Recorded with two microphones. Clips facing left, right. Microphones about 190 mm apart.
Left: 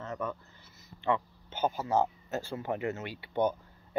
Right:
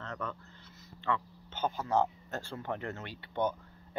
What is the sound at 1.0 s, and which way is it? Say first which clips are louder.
Speech: left 4 dB; 10° left (ahead or behind).